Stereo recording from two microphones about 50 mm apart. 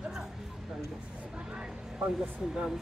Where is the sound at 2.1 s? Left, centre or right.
Centre.